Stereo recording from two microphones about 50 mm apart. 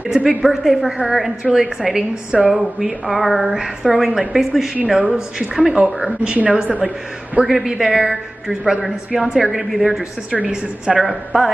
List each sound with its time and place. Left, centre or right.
0.4 s a woman's voice: centre; by 6.8 s right
7.4 s a man's voice: centre
10.3 s a woman's voice: right
11.0 s a man's voice: centre